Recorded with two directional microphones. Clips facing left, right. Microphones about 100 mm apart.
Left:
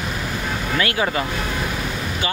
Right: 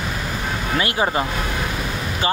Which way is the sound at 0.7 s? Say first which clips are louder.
Right 1 dB; 25° right (ahead or behind).